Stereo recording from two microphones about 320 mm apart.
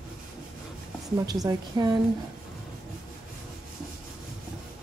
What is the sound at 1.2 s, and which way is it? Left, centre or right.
Speech, centre.